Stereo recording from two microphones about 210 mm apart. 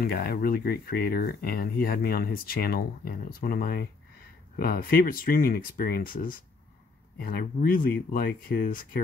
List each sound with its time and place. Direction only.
0.0 s speech: 45° left (ahead or behind)